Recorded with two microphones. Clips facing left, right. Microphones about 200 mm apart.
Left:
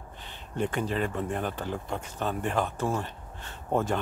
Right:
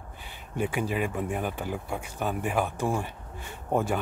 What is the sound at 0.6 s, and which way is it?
Speech, 10° right (ahead or behind).